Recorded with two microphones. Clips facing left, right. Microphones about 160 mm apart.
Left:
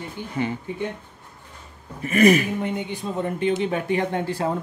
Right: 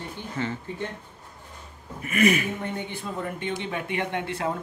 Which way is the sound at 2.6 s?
15° left (ahead or behind).